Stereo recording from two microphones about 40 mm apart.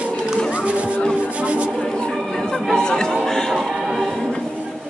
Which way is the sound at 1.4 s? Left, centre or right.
Right.